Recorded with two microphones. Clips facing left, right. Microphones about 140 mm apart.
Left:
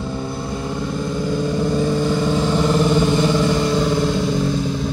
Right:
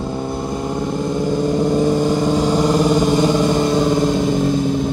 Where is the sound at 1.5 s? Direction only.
20° right (ahead or behind).